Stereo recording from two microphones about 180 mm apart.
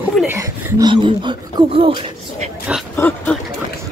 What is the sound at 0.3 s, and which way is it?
Speech, 15° right (ahead or behind).